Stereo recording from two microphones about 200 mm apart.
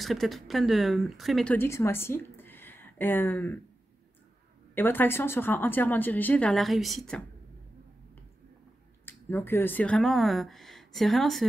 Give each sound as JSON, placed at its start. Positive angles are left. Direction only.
{"t": 0.0, "sound": "speech", "side_deg": 0}
{"t": 4.7, "sound": "speech", "side_deg": 10}
{"t": 9.0, "sound": "speech", "side_deg": 10}